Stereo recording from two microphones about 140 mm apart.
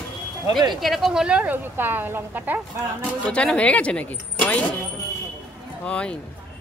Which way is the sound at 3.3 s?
5° left (ahead or behind).